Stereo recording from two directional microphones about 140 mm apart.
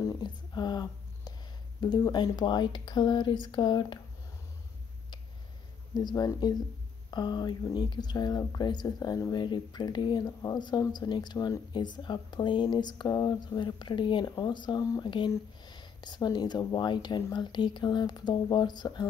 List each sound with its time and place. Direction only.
0.0 s a sound: 30° left (ahead or behind)
1.8 s speech: 30° left (ahead or behind)
5.9 s speech: 30° left (ahead or behind)